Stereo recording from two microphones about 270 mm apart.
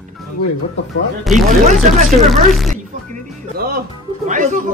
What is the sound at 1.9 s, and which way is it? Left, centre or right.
Speech, right.